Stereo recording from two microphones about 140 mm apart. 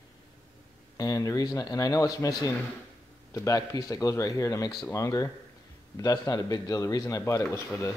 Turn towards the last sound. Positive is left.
turn(degrees=15)  # may be behind; listen again after turning